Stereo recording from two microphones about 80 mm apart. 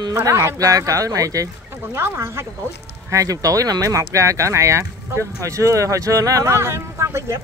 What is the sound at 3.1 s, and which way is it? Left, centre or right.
Speech, right.